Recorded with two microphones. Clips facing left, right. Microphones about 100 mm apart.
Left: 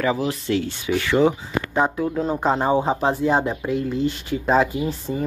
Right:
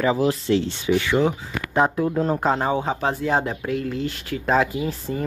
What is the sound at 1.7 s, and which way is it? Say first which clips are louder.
Speech: right 2 dB; 5° right (ahead or behind).